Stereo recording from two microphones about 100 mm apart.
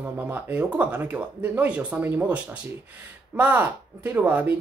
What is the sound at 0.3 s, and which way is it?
Speech, 15° right (ahead or behind).